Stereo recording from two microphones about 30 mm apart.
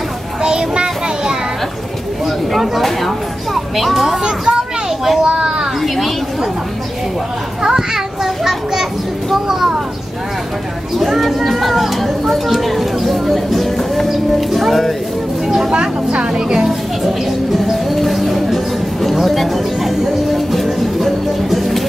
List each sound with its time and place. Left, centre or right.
0.5 s child singing: right
2.2 s a sound: centre
4.2 s a sound: right
5.8 s chatter: centre
7.6 s children playing: centre
11.0 s speech: centre
14.7 s speech: centre
15.7 s speech: right
16.3 s a child's voice: right
16.6 s speech: centre
17.8 s music: centre